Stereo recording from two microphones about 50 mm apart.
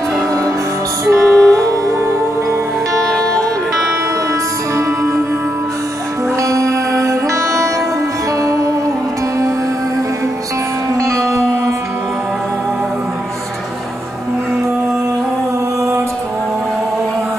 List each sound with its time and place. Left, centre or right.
1.2 s music: centre
1.6 s music: right
3.0 s music: centre
4.7 s music: right
6.4 s music: right
11.1 s music: centre